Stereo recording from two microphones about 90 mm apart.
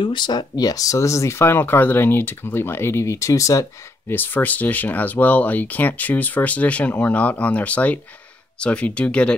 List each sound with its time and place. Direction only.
0.0 s speech: 60° left (ahead or behind); by 3.6 s 35° left (ahead or behind)
4.1 s speech: 20° left (ahead or behind)